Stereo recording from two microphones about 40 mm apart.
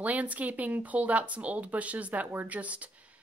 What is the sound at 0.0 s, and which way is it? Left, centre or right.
Speech, right.